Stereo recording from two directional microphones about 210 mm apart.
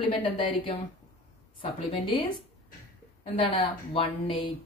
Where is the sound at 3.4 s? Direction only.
25° left (ahead or behind).